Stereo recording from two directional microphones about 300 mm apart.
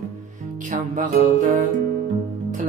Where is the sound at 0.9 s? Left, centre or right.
Right.